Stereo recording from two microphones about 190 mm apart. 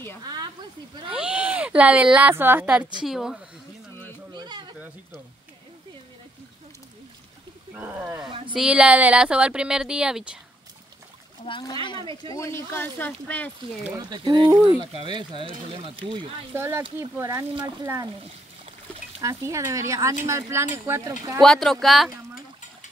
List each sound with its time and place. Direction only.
0.2 s a sound: 20° right (ahead or behind)
1.0 s speech: 5° right (ahead or behind)
4.3 s a sound: 20° right (ahead or behind)
7.7 s speech: 10° right (ahead or behind)
8.3 s a sound: 25° right (ahead or behind)
8.5 s speech: 5° right (ahead or behind)
11.4 s speech: 25° left (ahead or behind)
12.3 s speech: 15° left (ahead or behind)
13.9 s speech: 25° right (ahead or behind)
16.5 s speech: 15° right (ahead or behind)
19.2 s speech: 15° right (ahead or behind)
21.4 s speech: centre (ahead or behind)